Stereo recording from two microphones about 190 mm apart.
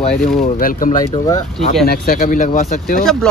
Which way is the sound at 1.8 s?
50° left (ahead or behind).